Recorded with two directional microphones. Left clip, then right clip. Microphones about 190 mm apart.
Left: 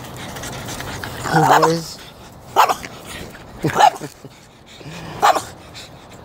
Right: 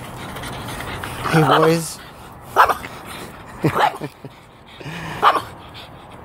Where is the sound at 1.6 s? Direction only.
Centre (ahead or behind).